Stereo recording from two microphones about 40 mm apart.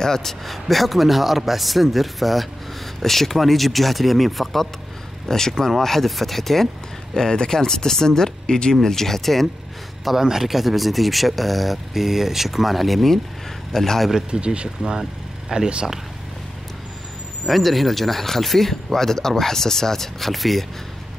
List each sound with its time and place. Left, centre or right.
0.0 s speech: centre
5.3 s speech: centre
10.2 s speech: centre
14.1 s speech: right
14.8 s speech: centre
17.5 s speech: centre